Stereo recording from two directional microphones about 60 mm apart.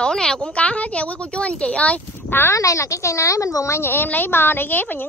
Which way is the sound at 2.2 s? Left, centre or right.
Left.